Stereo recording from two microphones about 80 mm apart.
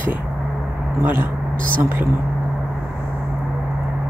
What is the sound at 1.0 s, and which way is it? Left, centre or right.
Speech, right.